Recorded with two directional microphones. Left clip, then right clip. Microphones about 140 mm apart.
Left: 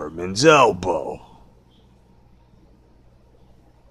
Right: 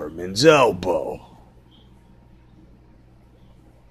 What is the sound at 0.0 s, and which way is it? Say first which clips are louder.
Speech: even; 20° left (ahead or behind).